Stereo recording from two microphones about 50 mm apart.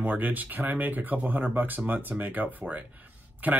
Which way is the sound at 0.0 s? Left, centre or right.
Right.